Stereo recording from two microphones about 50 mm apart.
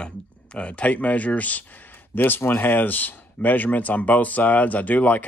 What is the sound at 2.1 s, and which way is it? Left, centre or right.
Speech, left.